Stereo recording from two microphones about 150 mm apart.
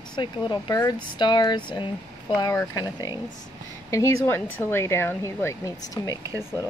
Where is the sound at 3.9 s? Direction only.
20° left (ahead or behind).